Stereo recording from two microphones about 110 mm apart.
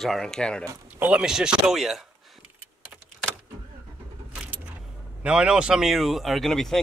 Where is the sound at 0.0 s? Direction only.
5° left (ahead or behind).